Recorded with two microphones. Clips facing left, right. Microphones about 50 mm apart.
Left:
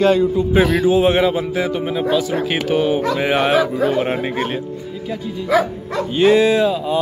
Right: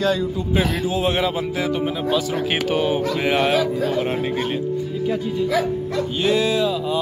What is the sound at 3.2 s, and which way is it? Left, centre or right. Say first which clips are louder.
Speech: left 2 dB; centre.